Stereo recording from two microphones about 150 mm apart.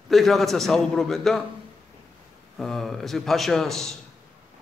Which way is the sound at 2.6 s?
Centre (ahead or behind).